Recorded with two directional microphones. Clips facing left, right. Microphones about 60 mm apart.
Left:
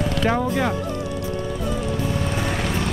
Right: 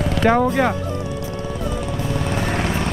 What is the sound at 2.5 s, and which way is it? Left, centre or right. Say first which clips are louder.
Vehicle: right 2 dB; right.